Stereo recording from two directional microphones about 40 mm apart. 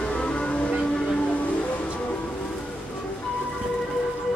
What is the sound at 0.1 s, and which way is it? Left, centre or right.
Music, left.